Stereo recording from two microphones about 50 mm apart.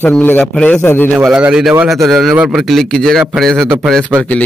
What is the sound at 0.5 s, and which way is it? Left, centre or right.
Speech, left.